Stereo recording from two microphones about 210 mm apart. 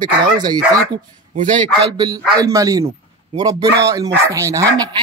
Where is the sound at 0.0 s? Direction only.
20° right (ahead or behind).